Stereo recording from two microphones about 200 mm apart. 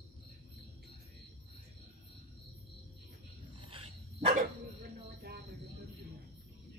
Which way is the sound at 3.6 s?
25° right (ahead or behind).